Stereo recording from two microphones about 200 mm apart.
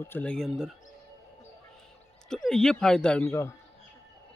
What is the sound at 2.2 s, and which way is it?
Speech, centre (ahead or behind).